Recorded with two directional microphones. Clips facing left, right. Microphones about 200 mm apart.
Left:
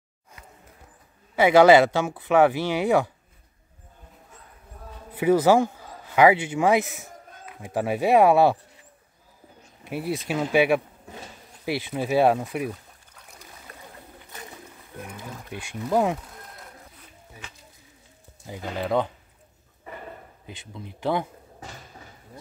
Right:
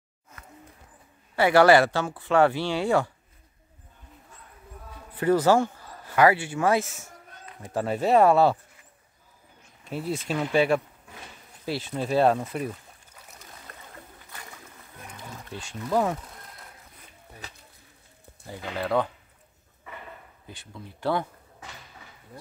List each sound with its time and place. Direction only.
1.3 s a man's voice: 20° left (ahead or behind)
5.1 s speech: 15° left (ahead or behind)
9.8 s speech: 15° left (ahead or behind)
14.3 s bird: 20° left (ahead or behind)
15.5 s speech: 15° left (ahead or behind)
18.5 s speech: 15° left (ahead or behind)
20.4 s speech: 20° left (ahead or behind)